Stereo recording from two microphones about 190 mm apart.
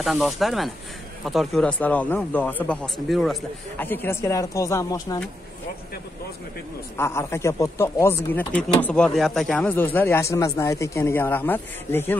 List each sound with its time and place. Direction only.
0.0 s speech: centre (ahead or behind)
3.7 s speech: 10° left (ahead or behind)
7.0 s speech: 15° left (ahead or behind)